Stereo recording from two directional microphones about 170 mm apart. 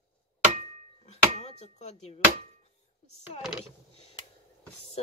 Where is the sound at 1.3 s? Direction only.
40° left (ahead or behind).